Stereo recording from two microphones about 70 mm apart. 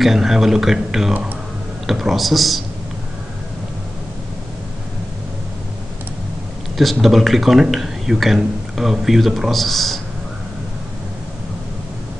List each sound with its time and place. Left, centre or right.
0.0 s speech: centre
6.8 s speech: centre